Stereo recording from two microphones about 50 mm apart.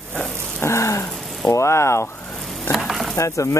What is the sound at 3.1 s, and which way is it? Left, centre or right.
Speech, left.